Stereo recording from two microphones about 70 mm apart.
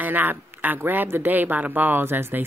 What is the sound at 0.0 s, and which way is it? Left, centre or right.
Speech, right.